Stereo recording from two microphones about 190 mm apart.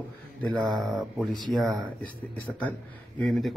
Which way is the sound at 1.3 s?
20° right (ahead or behind).